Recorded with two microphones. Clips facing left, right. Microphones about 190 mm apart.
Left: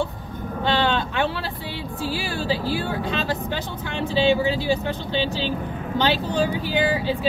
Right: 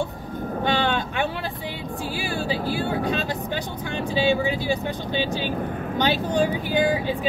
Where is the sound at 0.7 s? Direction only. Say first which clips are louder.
Left 2 dB; 15° right (ahead or behind).